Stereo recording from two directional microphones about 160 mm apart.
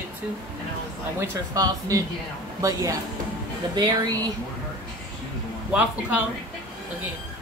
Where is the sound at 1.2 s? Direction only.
20° right (ahead or behind).